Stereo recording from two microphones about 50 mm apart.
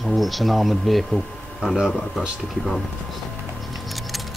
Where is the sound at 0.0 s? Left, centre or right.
Centre.